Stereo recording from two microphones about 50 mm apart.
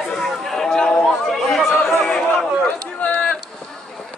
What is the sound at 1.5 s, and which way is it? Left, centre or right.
Chatter, centre.